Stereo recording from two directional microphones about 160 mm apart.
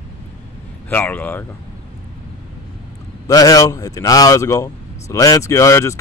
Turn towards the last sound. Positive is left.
turn(degrees=20)  # may be behind; listen again after turning